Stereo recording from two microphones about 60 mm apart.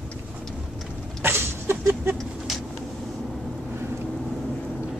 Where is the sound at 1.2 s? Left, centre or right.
Right.